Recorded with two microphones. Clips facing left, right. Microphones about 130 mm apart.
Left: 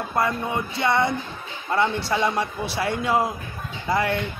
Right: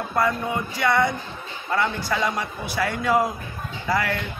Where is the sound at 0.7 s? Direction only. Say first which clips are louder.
Even; 25° left (ahead or behind).